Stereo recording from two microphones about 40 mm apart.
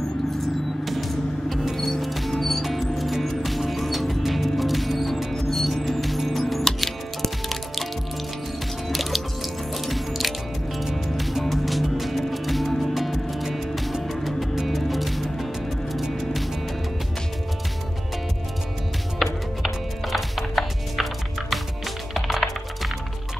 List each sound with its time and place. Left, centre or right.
0.4 s vehicle: centre
1.8 s music: centre
19.1 s music: centre